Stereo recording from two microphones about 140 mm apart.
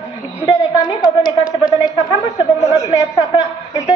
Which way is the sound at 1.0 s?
90° left.